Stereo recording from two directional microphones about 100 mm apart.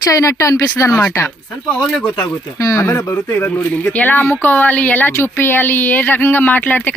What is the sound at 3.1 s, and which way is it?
Speech, 20° left (ahead or behind).